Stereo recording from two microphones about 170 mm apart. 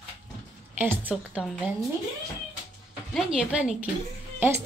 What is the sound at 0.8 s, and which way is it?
Speech, 10° right (ahead or behind).